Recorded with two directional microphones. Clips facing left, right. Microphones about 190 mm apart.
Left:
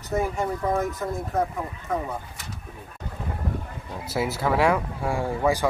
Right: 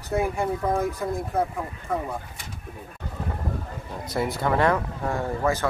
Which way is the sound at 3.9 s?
5° left (ahead or behind).